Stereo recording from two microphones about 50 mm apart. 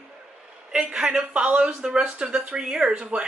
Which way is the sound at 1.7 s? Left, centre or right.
Centre.